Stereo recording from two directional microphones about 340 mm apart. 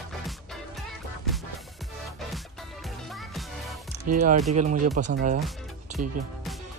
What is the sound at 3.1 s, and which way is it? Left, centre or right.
Music, centre.